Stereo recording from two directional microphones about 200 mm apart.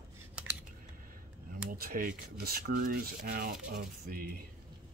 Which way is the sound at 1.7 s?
45° right (ahead or behind).